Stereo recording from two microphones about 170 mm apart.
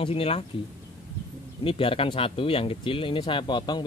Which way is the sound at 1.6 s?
30° left (ahead or behind).